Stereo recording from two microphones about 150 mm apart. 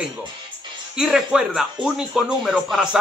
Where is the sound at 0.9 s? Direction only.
5° right (ahead or behind).